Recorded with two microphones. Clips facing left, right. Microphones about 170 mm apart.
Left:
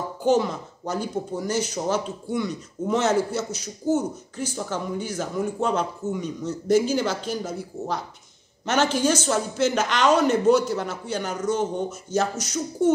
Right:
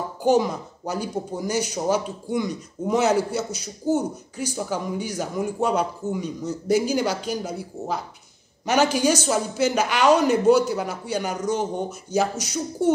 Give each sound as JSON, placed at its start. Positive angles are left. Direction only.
{"t": 0.2, "sound": "speech", "side_deg": -10}